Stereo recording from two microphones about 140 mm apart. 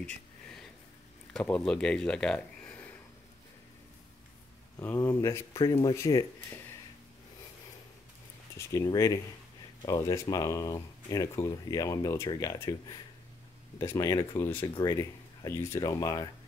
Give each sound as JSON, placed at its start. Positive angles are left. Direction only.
{"t": 0.0, "sound": "a sound", "side_deg": 5}
{"t": 1.3, "sound": "speech", "side_deg": 5}
{"t": 4.7, "sound": "speech", "side_deg": 15}
{"t": 8.5, "sound": "speech", "side_deg": 25}
{"t": 13.7, "sound": "speech", "side_deg": 20}
{"t": 14.7, "sound": "speech", "side_deg": 30}